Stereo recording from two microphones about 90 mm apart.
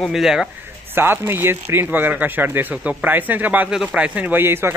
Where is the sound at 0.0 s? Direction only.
5° right (ahead or behind).